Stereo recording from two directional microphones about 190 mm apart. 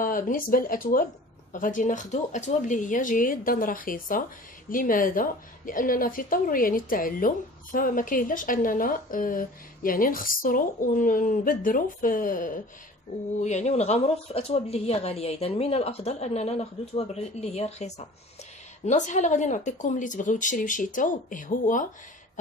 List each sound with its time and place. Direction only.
0.0 s a woman's voice: 50° left (ahead or behind)